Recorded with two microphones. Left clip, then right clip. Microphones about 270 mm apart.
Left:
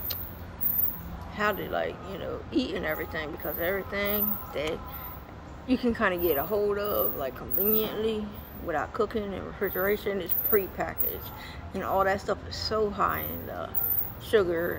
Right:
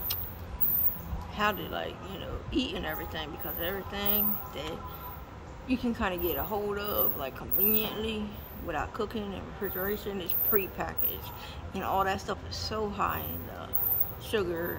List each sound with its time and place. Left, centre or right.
1.3 s speech: centre
5.7 s speech: centre